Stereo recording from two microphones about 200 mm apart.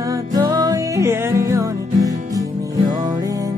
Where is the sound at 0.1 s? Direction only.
20° right (ahead or behind).